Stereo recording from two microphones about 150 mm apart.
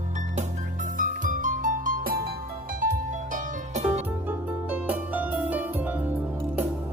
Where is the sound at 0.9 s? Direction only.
60° right (ahead or behind).